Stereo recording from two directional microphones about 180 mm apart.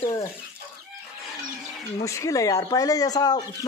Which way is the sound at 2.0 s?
20° left (ahead or behind).